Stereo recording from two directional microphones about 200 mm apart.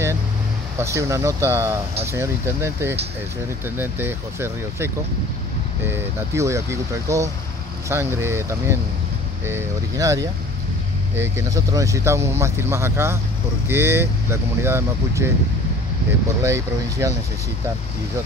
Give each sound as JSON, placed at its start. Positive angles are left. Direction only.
{"t": 0.7, "sound": "speech", "side_deg": -15}
{"t": 16.4, "sound": "speech", "side_deg": -15}